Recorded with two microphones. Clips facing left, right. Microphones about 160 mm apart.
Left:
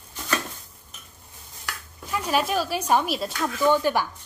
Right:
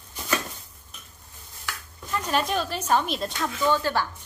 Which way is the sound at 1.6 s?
10° left (ahead or behind).